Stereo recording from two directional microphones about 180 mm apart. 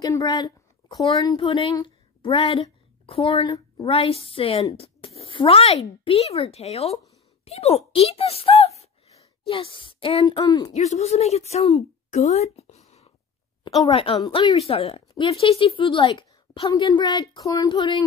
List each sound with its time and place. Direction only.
0.0 s a sound: 20° left (ahead or behind)
1.4 s a woman's voice: 30° left (ahead or behind)
10.7 s a woman's voice: 35° left (ahead or behind)